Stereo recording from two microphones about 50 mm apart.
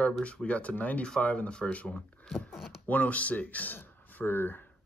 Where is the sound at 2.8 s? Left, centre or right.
Left.